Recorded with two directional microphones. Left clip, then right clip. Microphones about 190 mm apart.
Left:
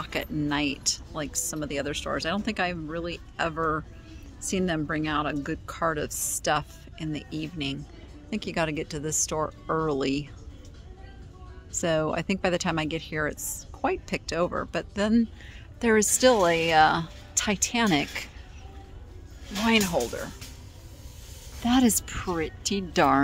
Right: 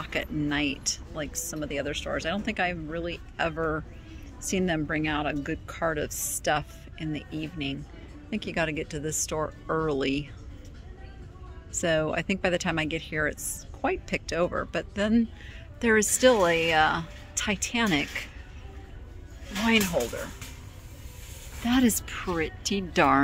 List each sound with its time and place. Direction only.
0.0 s speech: 15° left (ahead or behind)
11.8 s speech: 15° left (ahead or behind)
19.6 s speech: 15° left (ahead or behind)
21.6 s speech: 15° left (ahead or behind)